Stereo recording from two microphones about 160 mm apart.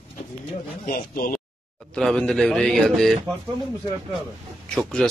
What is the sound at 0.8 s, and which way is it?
Speech, 60° left (ahead or behind).